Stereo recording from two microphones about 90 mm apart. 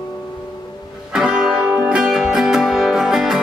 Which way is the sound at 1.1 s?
10° right (ahead or behind).